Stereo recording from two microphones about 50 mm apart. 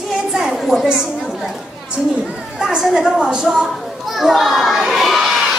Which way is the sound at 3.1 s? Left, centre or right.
Centre.